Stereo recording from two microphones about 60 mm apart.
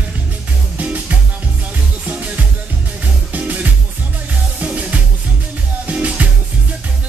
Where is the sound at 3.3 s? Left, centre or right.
Right.